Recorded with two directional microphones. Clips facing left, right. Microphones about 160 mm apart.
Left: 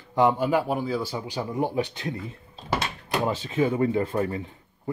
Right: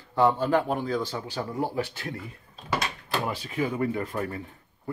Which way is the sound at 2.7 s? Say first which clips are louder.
Left 1 dB; 30° left (ahead or behind).